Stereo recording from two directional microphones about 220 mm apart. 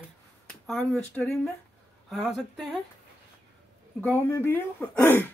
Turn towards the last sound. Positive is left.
turn(degrees=10)  # may be behind; listen again after turning